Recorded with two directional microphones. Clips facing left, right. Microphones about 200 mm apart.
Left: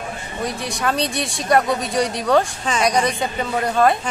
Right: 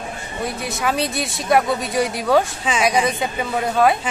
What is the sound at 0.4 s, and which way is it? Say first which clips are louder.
Speech: even; 5° right (ahead or behind).